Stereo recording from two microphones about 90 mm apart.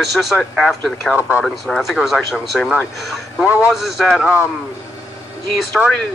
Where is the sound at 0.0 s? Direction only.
Centre (ahead or behind).